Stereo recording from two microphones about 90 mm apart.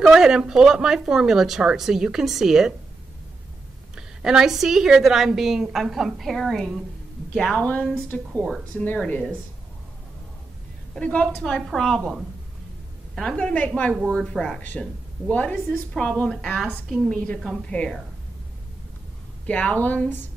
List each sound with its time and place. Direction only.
0.0 s a woman's voice: 5° right (ahead or behind)
3.9 s a woman's voice: 5° right (ahead or behind); by 9.2 s 15° left (ahead or behind)
11.0 s a woman's voice: 15° left (ahead or behind)
13.4 s a woman's voice: 15° left (ahead or behind)
19.4 s speech: 15° left (ahead or behind)